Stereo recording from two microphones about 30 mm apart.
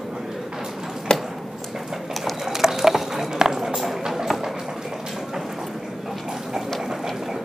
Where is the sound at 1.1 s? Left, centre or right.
Left.